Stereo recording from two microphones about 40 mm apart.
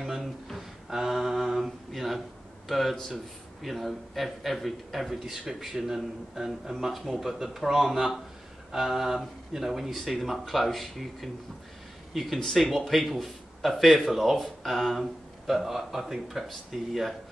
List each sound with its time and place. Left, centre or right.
0.0 s a sound: centre
0.8 s mantra: centre
1.9 s a sound: centre
2.7 s speech: centre
5.2 s speech: centre
15.4 s speech: centre